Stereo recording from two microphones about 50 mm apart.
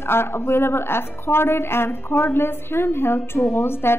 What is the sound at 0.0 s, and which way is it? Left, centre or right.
Speech, left.